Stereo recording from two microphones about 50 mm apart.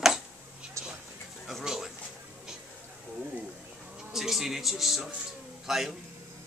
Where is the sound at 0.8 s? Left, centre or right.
Right.